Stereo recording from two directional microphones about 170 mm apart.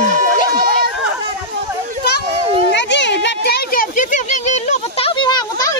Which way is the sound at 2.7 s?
90° left.